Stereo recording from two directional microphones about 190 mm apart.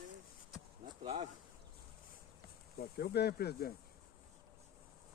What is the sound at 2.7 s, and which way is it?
Speech, 55° left (ahead or behind).